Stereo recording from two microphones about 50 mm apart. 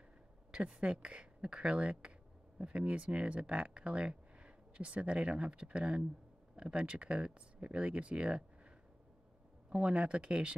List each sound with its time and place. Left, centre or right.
0.5 s speech: right
9.7 s speech: right